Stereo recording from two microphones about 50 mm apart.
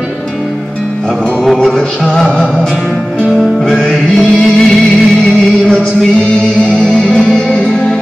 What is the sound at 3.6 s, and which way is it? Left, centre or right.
Music, centre.